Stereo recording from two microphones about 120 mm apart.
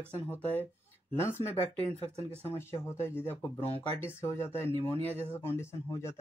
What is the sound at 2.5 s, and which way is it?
Speech, 20° left (ahead or behind).